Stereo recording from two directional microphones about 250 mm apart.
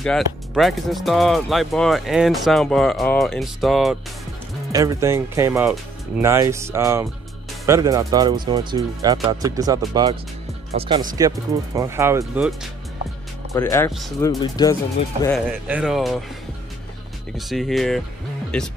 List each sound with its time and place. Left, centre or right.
0.6 s speech: centre
4.7 s speech: centre
13.6 s speech: centre
15.3 s speech: centre
17.4 s speech: centre